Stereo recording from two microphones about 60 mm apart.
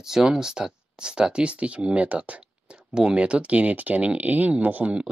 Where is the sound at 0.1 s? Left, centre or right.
Centre.